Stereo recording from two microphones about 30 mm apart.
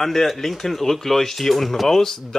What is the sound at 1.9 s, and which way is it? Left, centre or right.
Speech, centre.